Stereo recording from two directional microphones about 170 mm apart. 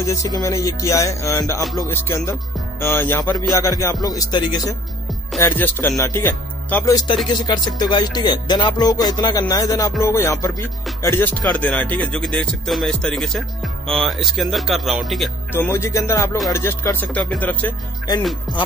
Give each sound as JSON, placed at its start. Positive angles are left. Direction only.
{"t": 0.0, "sound": "music", "side_deg": 20}
{"t": 1.9, "sound": "speech", "side_deg": 15}
{"t": 3.6, "sound": "music", "side_deg": 20}
{"t": 5.4, "sound": "speech", "side_deg": 10}
{"t": 7.4, "sound": "music", "side_deg": 25}
{"t": 10.0, "sound": "speech", "side_deg": 15}
{"t": 15.5, "sound": "speech", "side_deg": 15}